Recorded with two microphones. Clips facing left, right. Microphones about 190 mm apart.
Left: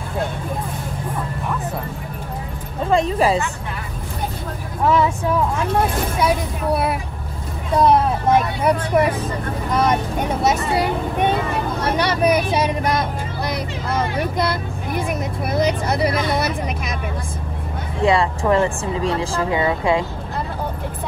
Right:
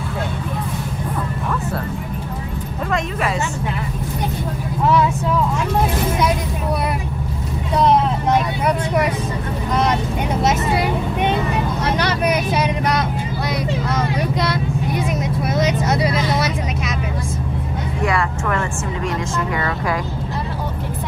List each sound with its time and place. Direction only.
2.9 s speech: 30° left (ahead or behind)
18.0 s speech: 30° left (ahead or behind)